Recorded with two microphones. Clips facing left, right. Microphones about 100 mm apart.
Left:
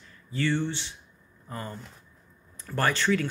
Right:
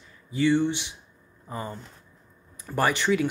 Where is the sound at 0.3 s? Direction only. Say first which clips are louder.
Right 5 dB; 15° right (ahead or behind).